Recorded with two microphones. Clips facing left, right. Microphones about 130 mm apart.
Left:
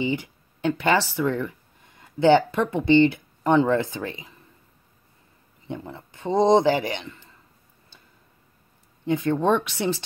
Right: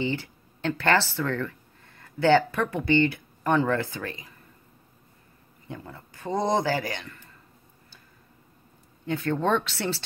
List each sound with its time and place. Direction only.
0.0 s speech: 15° left (ahead or behind)
5.7 s speech: 20° left (ahead or behind)
9.0 s speech: 15° left (ahead or behind)